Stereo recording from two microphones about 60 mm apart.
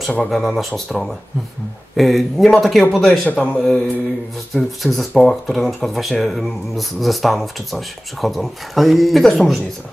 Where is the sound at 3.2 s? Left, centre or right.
Left.